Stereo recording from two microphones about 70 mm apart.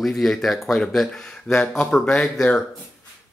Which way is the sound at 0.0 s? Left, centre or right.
Centre.